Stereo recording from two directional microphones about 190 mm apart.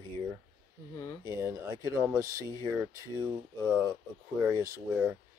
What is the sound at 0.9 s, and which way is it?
Speech, 15° left (ahead or behind).